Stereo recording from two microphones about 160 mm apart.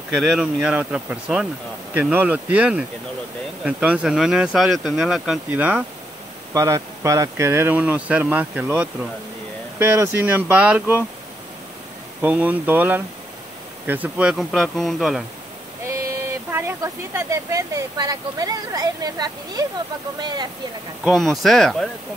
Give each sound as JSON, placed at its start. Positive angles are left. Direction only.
{"t": 0.4, "sound": "speech", "side_deg": -5}
{"t": 12.2, "sound": "speech", "side_deg": -10}
{"t": 15.9, "sound": "speech", "side_deg": -15}
{"t": 21.0, "sound": "speech", "side_deg": 0}